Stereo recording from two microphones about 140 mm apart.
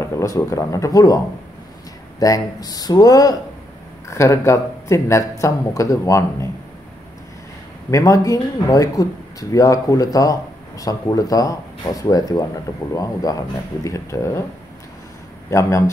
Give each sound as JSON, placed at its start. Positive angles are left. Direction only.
{"t": 0.0, "sound": "speech", "side_deg": 20}
{"t": 7.9, "sound": "speech", "side_deg": 25}
{"t": 15.5, "sound": "speech", "side_deg": 20}